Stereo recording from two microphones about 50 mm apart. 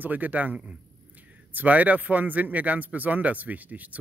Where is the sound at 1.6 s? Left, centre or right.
Right.